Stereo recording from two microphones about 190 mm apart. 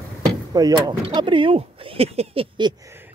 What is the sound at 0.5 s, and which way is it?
Speech, 20° right (ahead or behind).